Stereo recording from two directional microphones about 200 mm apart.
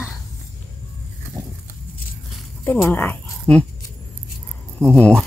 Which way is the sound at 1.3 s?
10° right (ahead or behind).